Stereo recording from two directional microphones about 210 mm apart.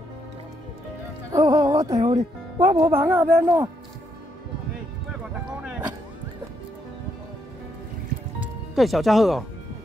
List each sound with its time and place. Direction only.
1.3 s speech: 15° right (ahead or behind)
5.6 s music: 5° right (ahead or behind)
8.4 s speech: centre (ahead or behind)